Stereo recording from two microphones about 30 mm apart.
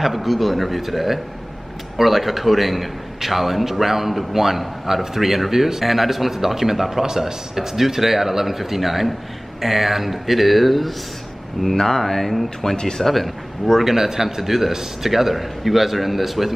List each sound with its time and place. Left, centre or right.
0.0 s a man's voice: centre
11.7 s speech: centre
12.7 s speech: left
13.0 s a man's voice: centre
13.7 s a man's voice: centre